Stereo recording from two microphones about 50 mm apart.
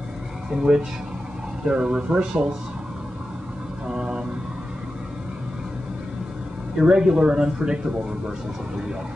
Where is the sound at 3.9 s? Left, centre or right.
Centre.